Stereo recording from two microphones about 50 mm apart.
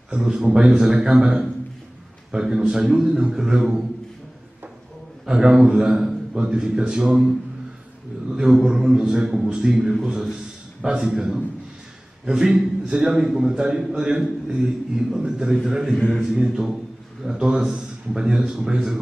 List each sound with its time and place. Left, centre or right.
0.1 s a man's voice: centre
5.2 s a man's voice: centre
8.3 s a man's voice: centre